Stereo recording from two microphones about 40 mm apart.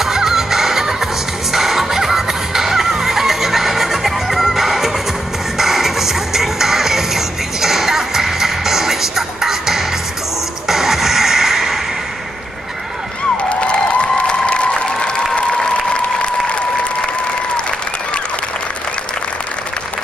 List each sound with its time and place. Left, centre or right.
0.0 s music: centre
13.6 s applause: left